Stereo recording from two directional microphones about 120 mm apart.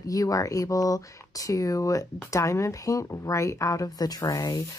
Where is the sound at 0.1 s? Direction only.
30° left (ahead or behind).